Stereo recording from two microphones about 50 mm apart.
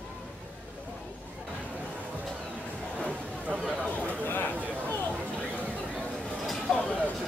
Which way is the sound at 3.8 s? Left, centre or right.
Left.